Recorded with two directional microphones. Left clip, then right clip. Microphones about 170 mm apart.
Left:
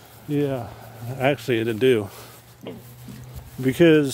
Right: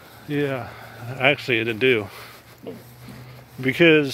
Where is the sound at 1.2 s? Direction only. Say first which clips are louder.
Right 2 dB; 40° left (ahead or behind).